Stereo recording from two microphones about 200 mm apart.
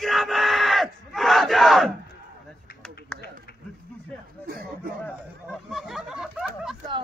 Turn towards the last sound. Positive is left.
turn(degrees=0)  # may be behind; listen again after turning